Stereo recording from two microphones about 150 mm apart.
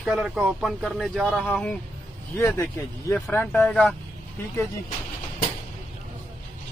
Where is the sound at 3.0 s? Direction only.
10° left (ahead or behind).